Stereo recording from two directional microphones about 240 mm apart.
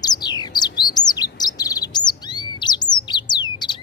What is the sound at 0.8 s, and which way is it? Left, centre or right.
Chirp, centre.